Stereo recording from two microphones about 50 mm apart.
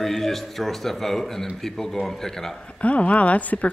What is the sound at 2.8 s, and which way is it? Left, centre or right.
Speech, left.